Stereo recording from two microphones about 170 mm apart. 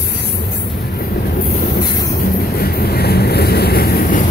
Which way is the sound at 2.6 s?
65° left (ahead or behind).